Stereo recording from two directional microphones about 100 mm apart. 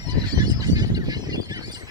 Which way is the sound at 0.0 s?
45° right (ahead or behind).